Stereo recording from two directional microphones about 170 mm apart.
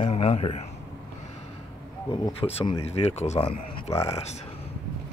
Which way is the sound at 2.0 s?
25° left (ahead or behind).